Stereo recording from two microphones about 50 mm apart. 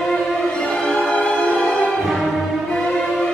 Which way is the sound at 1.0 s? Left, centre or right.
Left.